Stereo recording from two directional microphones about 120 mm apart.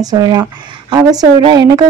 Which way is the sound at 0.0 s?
35° right (ahead or behind).